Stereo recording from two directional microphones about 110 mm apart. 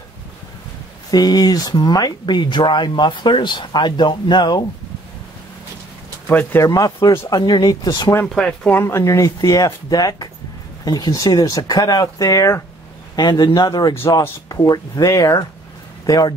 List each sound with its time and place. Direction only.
1.1 s speech: 35° left (ahead or behind)
6.2 s speech: 15° left (ahead or behind)
6.6 s speech: 30° left (ahead or behind)
8.4 s speech: 10° left (ahead or behind); by 16.3 s 35° left (ahead or behind)